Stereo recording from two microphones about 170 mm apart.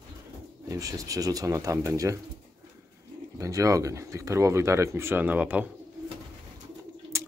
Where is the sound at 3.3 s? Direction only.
20° right (ahead or behind).